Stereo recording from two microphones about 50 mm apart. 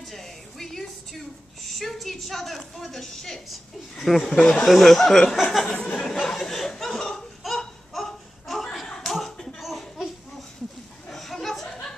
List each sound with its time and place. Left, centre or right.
0.0 s a woman's voice: centre
5.7 s speech: left
6.2 s laughter: centre
8.8 s slap: centre
9.6 s laughter: centre
11.1 s a sound: centre